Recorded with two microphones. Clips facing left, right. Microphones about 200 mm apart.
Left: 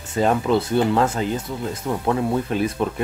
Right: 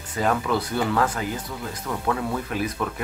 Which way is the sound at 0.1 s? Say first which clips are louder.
Left 5 dB; 25° left (ahead or behind).